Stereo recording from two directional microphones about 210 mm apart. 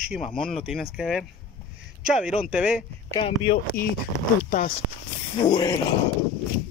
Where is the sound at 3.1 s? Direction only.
25° left (ahead or behind).